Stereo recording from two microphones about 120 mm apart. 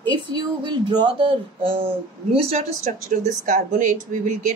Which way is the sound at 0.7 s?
40° right (ahead or behind).